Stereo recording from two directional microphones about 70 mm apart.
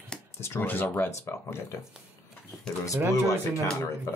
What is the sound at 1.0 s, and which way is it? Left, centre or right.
Speech, left.